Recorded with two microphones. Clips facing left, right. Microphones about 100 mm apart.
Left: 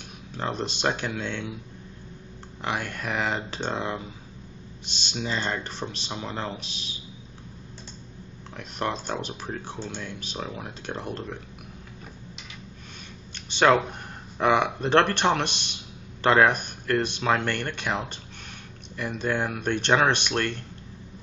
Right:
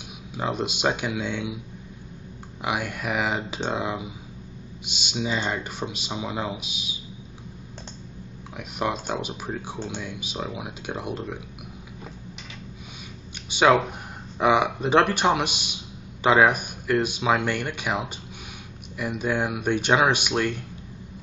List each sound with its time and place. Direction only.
0.3 s speech: 10° right (ahead or behind)
2.6 s speech: 10° right (ahead or behind)
8.5 s speech: 10° right (ahead or behind)
13.5 s speech: 10° right (ahead or behind)